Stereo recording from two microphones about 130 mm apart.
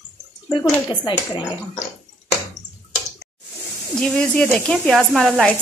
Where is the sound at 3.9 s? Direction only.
5° left (ahead or behind).